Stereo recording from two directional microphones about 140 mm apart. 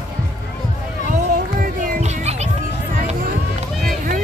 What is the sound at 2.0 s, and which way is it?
Music, 50° right (ahead or behind).